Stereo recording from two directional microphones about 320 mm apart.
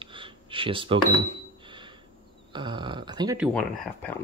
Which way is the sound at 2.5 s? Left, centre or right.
Centre.